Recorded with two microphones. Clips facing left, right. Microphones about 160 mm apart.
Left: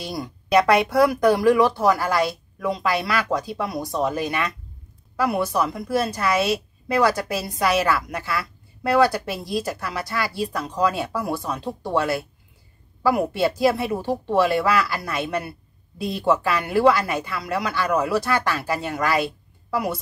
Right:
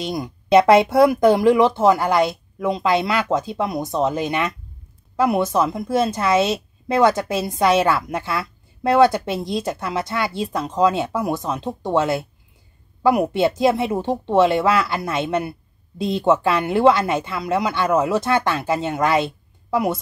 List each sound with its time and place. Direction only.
0.0 s a woman's voice: 20° right (ahead or behind)